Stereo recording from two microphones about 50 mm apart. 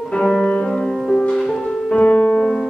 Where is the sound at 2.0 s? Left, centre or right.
Left.